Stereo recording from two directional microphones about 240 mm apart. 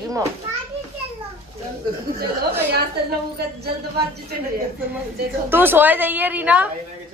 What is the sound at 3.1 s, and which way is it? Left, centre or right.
Speech, right.